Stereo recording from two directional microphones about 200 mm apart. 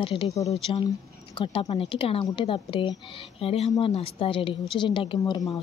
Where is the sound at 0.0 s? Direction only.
25° left (ahead or behind).